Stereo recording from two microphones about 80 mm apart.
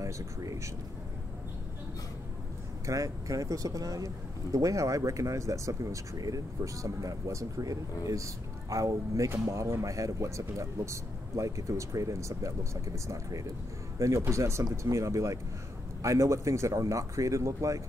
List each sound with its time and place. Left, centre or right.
0.0 s speech: right
2.9 s speech: right